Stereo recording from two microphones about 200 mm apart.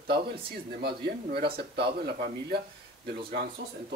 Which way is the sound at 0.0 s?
50° right (ahead or behind).